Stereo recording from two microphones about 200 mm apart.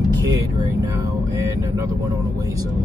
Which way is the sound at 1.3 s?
15° right (ahead or behind).